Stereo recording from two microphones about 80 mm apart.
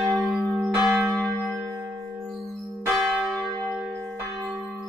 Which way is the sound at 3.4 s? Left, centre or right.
Right.